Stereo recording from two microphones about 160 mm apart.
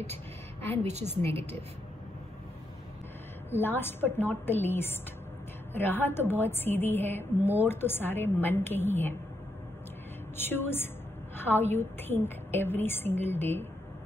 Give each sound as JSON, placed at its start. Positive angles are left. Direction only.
{"t": 1.3, "sound": "a woman's voice", "side_deg": -40}
{"t": 3.4, "sound": "a woman's voice", "side_deg": 15}
{"t": 10.3, "sound": "a woman's voice", "side_deg": 15}